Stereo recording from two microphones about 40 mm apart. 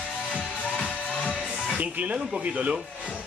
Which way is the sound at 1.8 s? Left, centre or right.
Right.